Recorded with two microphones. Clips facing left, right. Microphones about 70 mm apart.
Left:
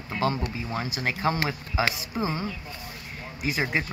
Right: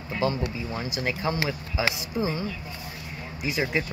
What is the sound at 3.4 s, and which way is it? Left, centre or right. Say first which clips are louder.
Speech: even; left.